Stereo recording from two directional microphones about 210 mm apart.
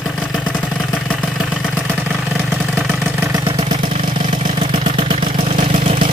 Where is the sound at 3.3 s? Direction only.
25° right (ahead or behind).